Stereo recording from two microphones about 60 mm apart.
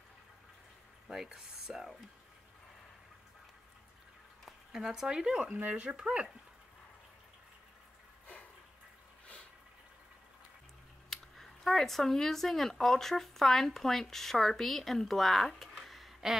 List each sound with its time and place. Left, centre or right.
1.0 s speech: centre
4.5 s speech: centre
5.4 s speech: right
11.1 s speech: centre